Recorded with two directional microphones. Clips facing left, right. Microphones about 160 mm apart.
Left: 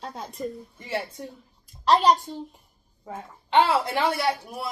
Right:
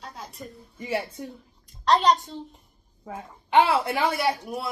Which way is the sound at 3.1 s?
10° right (ahead or behind).